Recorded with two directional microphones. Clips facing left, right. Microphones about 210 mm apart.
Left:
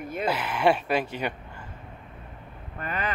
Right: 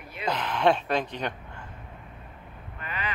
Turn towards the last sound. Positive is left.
turn(degrees=45)  # may be behind; listen again after turning